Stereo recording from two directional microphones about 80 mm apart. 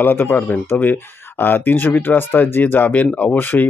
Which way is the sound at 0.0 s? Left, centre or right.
Left.